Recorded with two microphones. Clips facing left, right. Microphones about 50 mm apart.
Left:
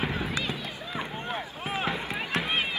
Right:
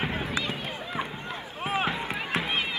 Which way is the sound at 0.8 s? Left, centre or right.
Centre.